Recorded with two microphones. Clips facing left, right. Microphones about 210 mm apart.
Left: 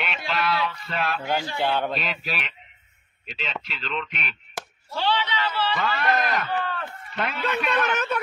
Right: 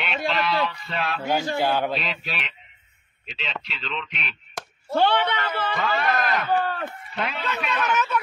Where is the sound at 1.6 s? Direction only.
5° right (ahead or behind).